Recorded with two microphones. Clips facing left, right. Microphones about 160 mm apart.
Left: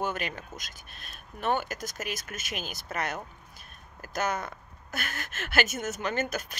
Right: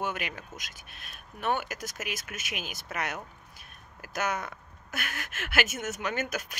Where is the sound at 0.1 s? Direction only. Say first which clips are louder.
Left 2 dB; 35° left (ahead or behind).